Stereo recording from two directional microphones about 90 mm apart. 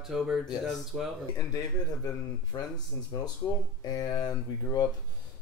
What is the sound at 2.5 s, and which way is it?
Speech, 45° left (ahead or behind).